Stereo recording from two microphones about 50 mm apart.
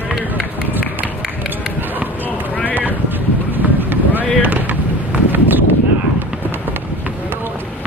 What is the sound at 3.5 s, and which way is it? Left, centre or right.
Vehicle, right.